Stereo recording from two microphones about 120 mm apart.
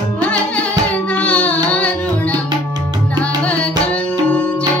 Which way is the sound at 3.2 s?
10° left (ahead or behind).